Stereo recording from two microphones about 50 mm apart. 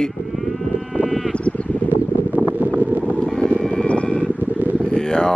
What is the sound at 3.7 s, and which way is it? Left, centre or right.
Vehicle, left.